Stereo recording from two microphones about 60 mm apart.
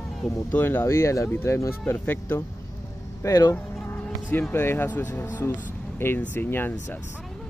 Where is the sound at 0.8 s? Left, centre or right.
Left.